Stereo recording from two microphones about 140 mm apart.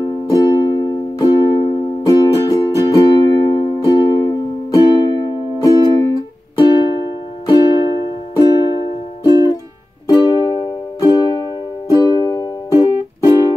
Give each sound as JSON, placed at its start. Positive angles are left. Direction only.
{"t": 0.3, "sound": "music", "side_deg": 25}